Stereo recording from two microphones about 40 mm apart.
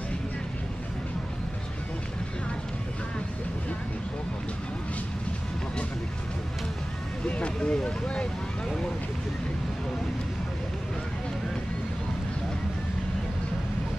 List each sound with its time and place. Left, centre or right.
7.2 s vehicle: left